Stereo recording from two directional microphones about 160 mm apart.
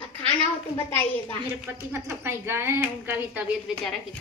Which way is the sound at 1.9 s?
15° right (ahead or behind).